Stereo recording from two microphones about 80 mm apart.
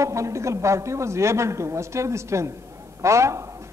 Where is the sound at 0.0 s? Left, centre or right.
Right.